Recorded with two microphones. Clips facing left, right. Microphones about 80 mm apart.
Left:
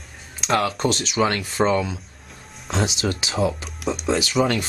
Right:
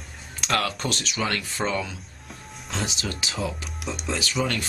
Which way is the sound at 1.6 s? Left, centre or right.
Left.